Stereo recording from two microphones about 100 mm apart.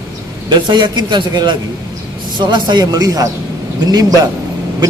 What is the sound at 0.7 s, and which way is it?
A man's voice, 45° right (ahead or behind).